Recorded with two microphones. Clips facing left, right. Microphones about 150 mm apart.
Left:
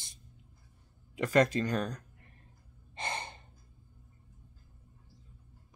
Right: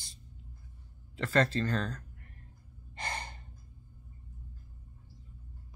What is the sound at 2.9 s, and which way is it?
Gasp, 25° left (ahead or behind).